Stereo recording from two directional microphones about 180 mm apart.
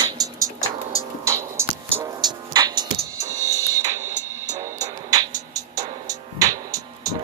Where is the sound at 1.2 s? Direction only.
15° right (ahead or behind).